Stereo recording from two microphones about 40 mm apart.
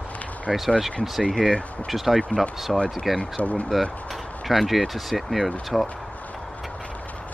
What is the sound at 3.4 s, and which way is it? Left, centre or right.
Speech, left.